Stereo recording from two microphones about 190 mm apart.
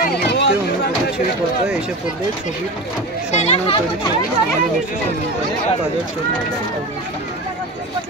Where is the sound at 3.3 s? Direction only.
35° left (ahead or behind).